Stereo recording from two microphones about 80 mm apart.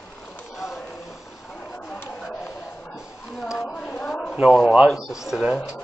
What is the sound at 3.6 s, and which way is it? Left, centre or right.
Speech, centre.